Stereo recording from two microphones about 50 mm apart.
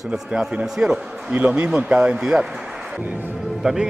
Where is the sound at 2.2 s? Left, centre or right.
Centre.